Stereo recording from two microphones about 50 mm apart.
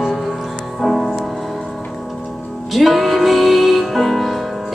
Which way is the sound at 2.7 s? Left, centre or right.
Centre.